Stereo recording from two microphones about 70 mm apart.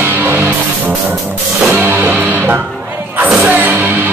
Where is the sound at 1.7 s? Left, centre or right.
Right.